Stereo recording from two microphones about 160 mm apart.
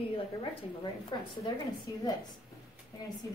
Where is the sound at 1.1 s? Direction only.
30° left (ahead or behind).